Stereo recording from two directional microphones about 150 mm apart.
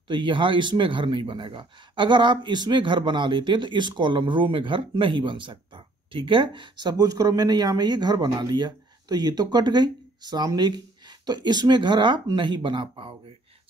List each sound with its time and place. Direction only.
0.1 s speech: 35° right (ahead or behind)